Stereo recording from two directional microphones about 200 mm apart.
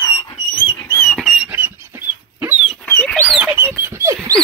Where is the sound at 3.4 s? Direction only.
10° right (ahead or behind).